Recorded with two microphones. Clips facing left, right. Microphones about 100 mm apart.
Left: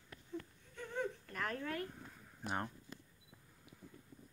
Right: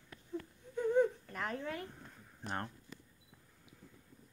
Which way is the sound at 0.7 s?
20° right (ahead or behind).